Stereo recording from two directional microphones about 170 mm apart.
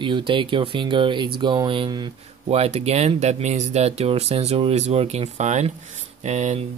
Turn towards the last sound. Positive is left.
turn(degrees=-40)  # may be behind; listen again after turning